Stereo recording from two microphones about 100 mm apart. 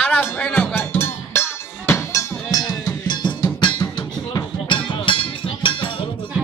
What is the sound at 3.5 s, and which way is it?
Music, 50° left (ahead or behind).